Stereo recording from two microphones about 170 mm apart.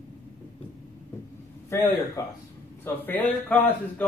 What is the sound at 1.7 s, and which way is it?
Speech, 15° left (ahead or behind).